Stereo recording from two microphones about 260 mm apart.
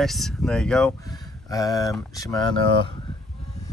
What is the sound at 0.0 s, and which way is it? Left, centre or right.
Speech, centre.